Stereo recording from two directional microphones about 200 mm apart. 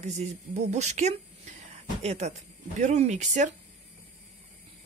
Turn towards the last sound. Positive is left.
turn(degrees=-35)  # may be behind; listen again after turning